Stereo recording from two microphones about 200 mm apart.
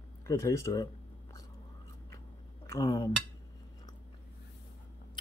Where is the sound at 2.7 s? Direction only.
15° left (ahead or behind).